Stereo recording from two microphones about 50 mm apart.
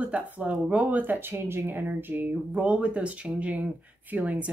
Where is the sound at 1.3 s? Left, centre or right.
Right.